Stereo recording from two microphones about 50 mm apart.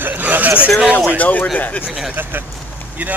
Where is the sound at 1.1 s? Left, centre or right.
Left.